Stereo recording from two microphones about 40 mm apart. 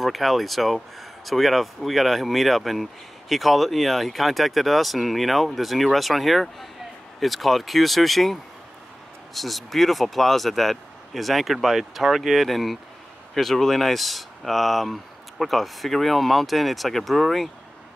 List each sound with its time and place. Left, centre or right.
0.0 s speech: centre